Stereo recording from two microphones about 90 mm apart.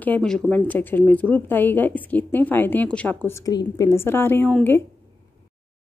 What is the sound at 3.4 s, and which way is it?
Speech, 45° left (ahead or behind).